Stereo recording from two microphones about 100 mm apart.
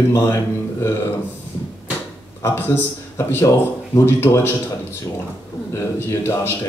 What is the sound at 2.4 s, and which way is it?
Speech, 25° left (ahead or behind).